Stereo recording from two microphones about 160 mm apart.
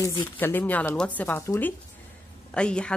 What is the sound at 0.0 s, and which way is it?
Speech, 25° left (ahead or behind).